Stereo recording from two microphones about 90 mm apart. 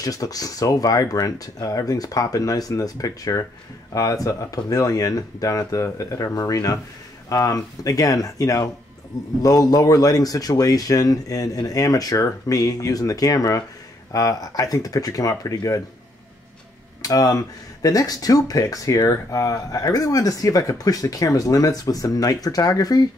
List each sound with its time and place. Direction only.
0.0 s speech: 45° left (ahead or behind)
17.0 s speech: 40° left (ahead or behind)